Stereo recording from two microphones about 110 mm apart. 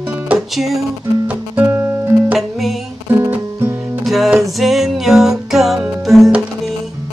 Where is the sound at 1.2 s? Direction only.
15° right (ahead or behind).